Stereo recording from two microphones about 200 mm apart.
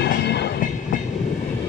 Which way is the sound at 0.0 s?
55° left (ahead or behind).